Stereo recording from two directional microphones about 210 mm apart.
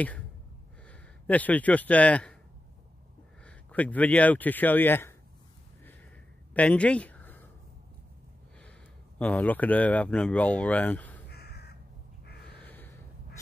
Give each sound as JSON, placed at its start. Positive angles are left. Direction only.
{"t": 0.8, "sound": "a man's voice", "side_deg": 5}
{"t": 3.4, "sound": "speech", "side_deg": 5}
{"t": 6.5, "sound": "a sound", "side_deg": 5}
{"t": 9.2, "sound": "speech", "side_deg": 5}
{"t": 11.2, "sound": "crow", "side_deg": 50}
{"t": 12.4, "sound": "gasp", "side_deg": 10}